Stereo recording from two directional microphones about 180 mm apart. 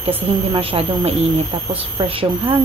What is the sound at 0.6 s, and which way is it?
Speech, 30° right (ahead or behind).